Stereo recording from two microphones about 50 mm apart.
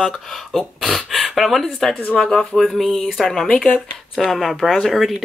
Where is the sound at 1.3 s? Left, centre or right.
Centre.